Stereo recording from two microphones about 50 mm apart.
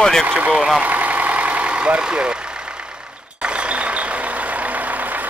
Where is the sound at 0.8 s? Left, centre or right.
Right.